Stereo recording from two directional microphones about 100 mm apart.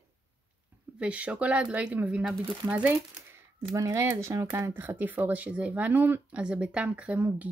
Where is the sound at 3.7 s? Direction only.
30° right (ahead or behind); by 7.4 s 15° right (ahead or behind).